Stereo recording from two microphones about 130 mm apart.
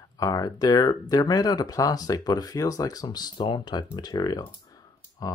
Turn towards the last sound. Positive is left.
turn(degrees=30)  # may be behind; listen again after turning